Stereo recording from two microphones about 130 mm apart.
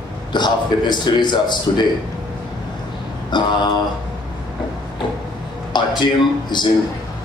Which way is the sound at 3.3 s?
35° left (ahead or behind).